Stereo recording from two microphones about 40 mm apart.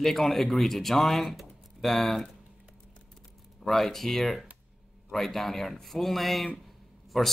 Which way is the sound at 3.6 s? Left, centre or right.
Centre.